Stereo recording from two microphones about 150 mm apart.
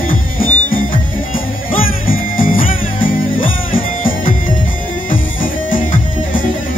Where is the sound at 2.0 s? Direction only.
70° left (ahead or behind).